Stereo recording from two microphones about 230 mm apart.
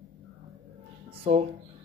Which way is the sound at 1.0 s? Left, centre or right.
Right.